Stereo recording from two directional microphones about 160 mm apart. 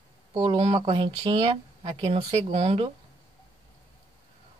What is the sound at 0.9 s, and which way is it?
Speech, 25° right (ahead or behind).